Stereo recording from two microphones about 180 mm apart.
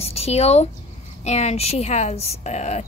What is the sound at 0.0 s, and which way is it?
Speech, 35° left (ahead or behind).